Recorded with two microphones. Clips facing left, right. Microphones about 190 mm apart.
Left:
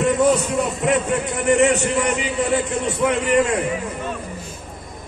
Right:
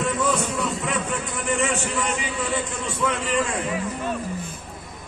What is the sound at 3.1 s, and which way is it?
Speech, 65° left (ahead or behind).